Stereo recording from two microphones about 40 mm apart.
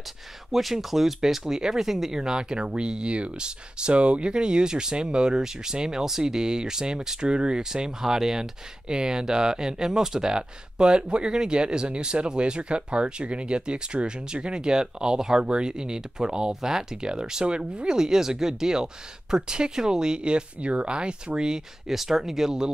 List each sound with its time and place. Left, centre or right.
0.5 s speech: centre
2.1 s speech: centre